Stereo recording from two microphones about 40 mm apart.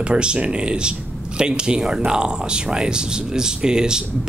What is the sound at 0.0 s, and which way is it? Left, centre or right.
Speech, right.